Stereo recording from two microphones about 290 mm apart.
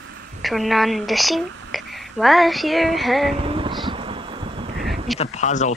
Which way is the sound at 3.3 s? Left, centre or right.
Centre.